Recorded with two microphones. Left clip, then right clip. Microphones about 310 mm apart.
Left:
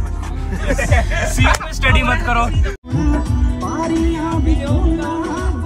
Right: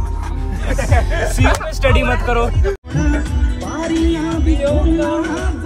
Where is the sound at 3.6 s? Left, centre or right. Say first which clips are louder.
Right 1 dB; left.